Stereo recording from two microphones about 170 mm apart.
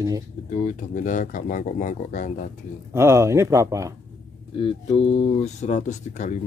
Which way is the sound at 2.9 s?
15° right (ahead or behind).